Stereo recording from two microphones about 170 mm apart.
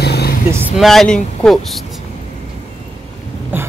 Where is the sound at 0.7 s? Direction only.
Centre (ahead or behind).